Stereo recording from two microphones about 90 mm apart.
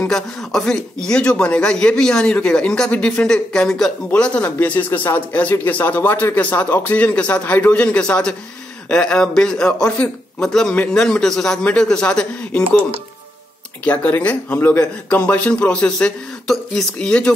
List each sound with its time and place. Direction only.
0.1 s a man's voice: 5° left (ahead or behind)
4.1 s a man's voice: 15° left (ahead or behind)
13.8 s a man's voice: 15° left (ahead or behind)